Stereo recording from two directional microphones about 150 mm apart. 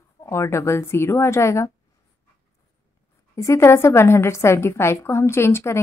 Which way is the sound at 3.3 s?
20° left (ahead or behind).